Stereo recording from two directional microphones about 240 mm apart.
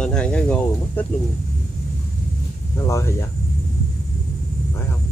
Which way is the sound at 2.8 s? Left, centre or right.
Centre.